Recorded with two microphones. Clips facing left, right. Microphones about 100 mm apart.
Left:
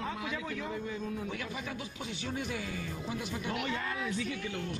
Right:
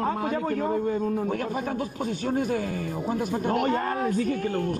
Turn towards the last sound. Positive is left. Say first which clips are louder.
# right 11 dB
turn(degrees=-45)  # may be behind; listen again after turning